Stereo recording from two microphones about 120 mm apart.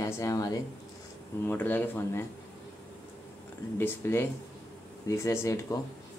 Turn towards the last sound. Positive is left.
turn(degrees=25)  # may be behind; listen again after turning